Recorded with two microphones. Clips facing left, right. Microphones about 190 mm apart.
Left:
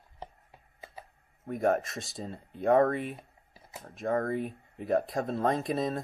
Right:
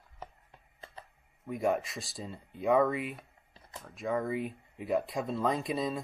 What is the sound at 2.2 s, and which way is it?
Speech, 50° left (ahead or behind).